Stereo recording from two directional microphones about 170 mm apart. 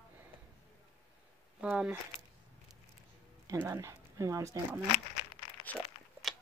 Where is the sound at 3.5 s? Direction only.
20° right (ahead or behind).